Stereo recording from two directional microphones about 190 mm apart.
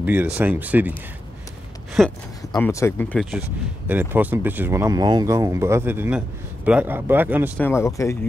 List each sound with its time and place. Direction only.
0.0 s speech: 10° right (ahead or behind)
2.0 s speech: centre (ahead or behind)
2.6 s speech: 10° left (ahead or behind); by 7.5 s 10° right (ahead or behind)
7.5 s speech: 10° left (ahead or behind)